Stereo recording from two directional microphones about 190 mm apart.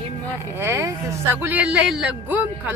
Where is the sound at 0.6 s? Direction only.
15° right (ahead or behind).